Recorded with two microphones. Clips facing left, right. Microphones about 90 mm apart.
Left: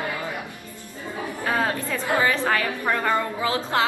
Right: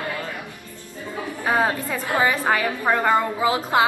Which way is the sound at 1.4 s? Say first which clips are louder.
Right 3 dB; 15° right (ahead or behind).